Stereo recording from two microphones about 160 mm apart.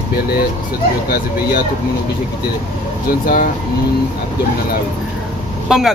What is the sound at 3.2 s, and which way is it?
Speech, 60° left (ahead or behind).